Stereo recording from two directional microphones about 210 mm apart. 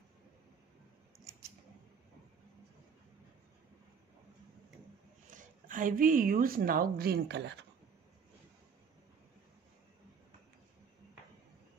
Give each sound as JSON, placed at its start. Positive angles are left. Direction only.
{"t": 5.3, "sound": "a woman's voice", "side_deg": -40}